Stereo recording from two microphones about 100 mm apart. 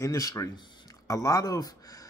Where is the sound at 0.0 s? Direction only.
35° left (ahead or behind).